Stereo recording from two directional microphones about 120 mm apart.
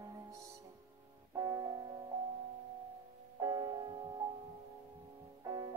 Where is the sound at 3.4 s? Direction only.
35° right (ahead or behind).